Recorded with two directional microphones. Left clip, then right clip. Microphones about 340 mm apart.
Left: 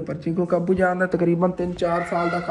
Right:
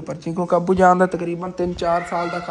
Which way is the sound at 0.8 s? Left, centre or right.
Right.